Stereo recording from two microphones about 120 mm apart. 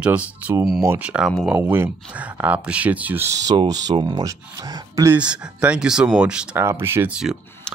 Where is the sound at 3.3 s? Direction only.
30° right (ahead or behind).